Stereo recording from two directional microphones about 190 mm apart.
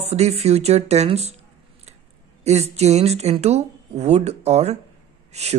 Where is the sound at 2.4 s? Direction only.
35° right (ahead or behind).